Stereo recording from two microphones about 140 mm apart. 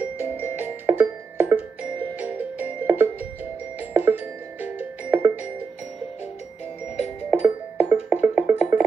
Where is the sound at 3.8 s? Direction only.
10° right (ahead or behind).